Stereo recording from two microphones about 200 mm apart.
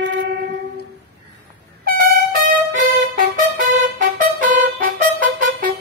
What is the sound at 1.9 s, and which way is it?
Music, 45° right (ahead or behind).